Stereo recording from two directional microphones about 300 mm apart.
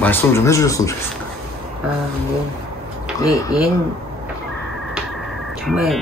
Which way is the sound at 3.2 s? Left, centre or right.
Centre.